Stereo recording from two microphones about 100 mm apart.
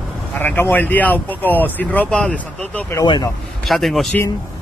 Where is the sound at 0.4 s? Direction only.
20° left (ahead or behind).